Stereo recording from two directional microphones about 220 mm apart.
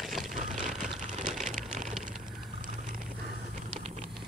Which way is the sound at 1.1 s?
35° right (ahead or behind).